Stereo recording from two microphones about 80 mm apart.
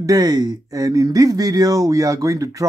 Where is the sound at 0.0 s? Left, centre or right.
Right.